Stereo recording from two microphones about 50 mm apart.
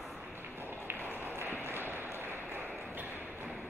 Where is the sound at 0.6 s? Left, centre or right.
Right.